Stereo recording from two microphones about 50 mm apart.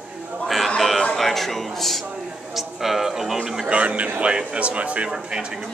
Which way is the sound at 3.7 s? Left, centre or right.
Right.